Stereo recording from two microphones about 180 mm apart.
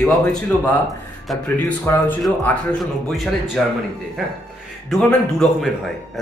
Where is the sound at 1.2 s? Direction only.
5° left (ahead or behind).